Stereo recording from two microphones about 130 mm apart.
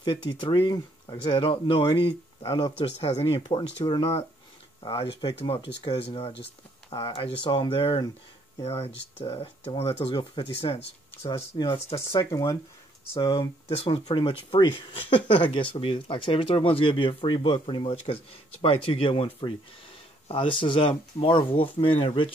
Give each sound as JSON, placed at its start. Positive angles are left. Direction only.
{"t": 0.0, "sound": "speech", "side_deg": 35}
{"t": 2.4, "sound": "speech", "side_deg": 25}
{"t": 3.0, "sound": "speech", "side_deg": 50}
{"t": 8.5, "sound": "speech", "side_deg": 50}
{"t": 12.1, "sound": "speech", "side_deg": 25}
{"t": 13.7, "sound": "speech", "side_deg": 45}